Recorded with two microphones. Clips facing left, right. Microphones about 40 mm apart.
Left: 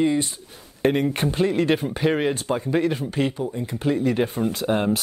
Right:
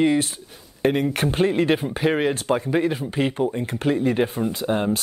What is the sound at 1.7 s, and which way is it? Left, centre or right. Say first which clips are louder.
Speech: even; centre.